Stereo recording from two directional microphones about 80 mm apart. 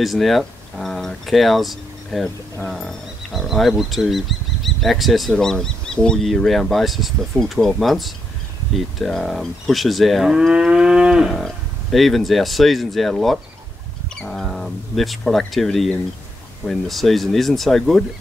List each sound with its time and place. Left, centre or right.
0.0 s speech: centre
2.2 s speech: left
2.7 s speech: centre
11.3 s speech: centre
14.3 s a sound: centre
16.6 s speech: centre